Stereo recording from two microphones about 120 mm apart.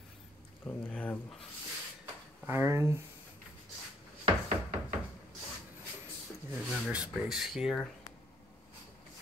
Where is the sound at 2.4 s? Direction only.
20° right (ahead or behind).